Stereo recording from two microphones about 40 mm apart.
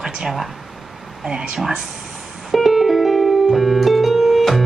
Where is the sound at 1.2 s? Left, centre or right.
Right.